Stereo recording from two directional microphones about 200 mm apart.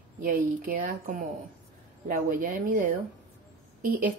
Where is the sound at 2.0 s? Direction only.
45° right (ahead or behind).